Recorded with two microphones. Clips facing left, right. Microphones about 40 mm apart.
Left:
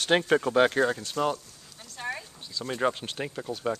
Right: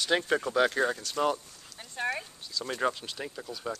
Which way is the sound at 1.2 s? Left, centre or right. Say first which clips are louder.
Even; centre.